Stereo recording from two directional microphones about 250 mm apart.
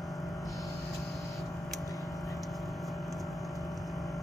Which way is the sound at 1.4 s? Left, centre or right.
Centre.